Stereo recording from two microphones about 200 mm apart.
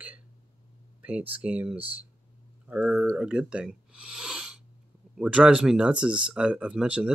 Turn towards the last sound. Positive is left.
turn(degrees=-5)  # may be behind; listen again after turning